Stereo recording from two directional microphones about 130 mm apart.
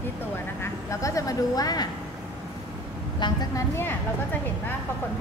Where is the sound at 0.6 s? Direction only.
25° left (ahead or behind).